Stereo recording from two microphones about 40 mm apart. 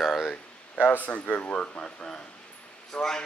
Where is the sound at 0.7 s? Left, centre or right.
Left.